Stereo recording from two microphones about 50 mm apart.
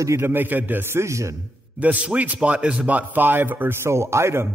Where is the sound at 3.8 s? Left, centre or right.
Right.